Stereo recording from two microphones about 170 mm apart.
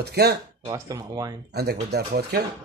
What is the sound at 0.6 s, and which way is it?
Speech, 20° right (ahead or behind).